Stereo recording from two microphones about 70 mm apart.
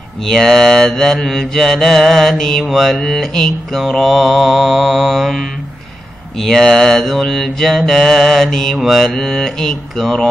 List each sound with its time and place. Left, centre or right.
0.2 s mantra: centre